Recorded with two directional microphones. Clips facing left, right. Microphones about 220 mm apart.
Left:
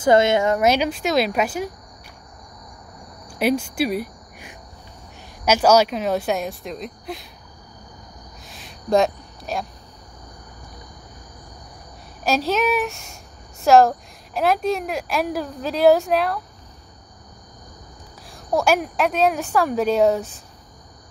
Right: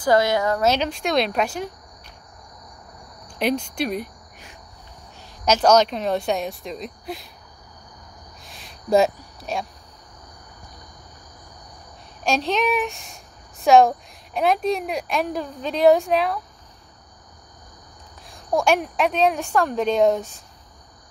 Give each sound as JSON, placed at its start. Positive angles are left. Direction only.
{"t": 0.0, "sound": "speech", "side_deg": 25}
{"t": 0.7, "sound": "speech", "side_deg": 10}
{"t": 3.3, "sound": "speech", "side_deg": 5}
{"t": 8.5, "sound": "a sound", "side_deg": 0}
{"t": 12.2, "sound": "speech", "side_deg": 5}
{"t": 18.3, "sound": "speech", "side_deg": 5}